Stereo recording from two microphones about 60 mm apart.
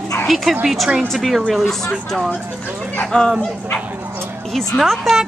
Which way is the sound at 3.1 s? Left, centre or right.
Centre.